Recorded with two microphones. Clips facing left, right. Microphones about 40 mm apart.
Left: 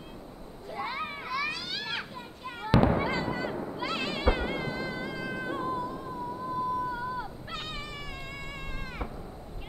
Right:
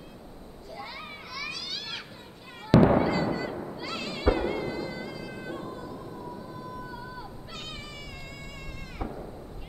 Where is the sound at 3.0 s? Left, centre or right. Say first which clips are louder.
Right 3 dB; left.